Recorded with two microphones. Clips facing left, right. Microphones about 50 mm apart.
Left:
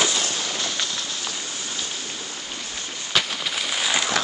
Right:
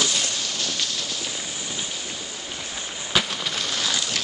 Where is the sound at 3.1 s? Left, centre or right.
Centre.